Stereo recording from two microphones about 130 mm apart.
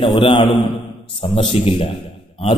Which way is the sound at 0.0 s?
40° left (ahead or behind).